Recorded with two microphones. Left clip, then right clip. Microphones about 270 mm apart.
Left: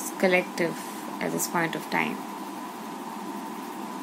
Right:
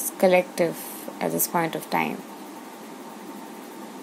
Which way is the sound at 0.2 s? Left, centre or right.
Right.